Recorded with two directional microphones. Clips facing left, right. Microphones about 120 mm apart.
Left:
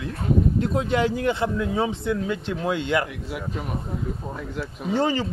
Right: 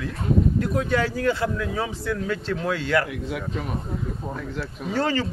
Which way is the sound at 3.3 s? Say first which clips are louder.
Right 1 dB; 5° left (ahead or behind).